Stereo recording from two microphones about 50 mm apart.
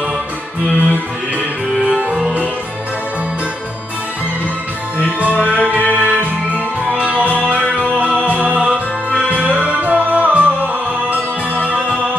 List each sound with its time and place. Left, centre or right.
0.7 s music: left
1.9 s music: right
4.9 s music: right